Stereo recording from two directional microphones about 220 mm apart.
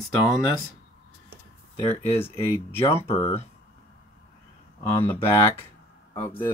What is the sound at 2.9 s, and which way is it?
Speech, 25° left (ahead or behind).